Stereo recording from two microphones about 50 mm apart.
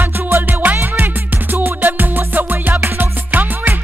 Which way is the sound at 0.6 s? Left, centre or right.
Right.